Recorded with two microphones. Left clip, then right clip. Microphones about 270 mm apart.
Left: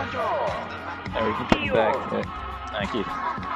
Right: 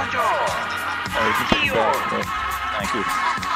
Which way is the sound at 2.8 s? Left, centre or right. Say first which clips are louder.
Right 7 dB; right.